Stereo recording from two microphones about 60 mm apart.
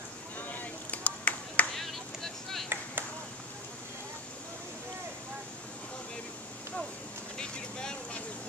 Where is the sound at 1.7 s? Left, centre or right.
Centre.